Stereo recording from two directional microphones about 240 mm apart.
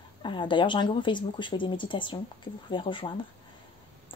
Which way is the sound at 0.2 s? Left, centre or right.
Centre.